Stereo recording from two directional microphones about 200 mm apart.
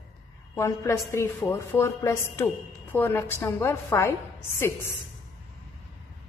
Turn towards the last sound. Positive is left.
turn(degrees=10)  # may be behind; listen again after turning